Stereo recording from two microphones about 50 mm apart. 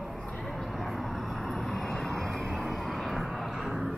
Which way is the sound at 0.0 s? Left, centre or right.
Centre.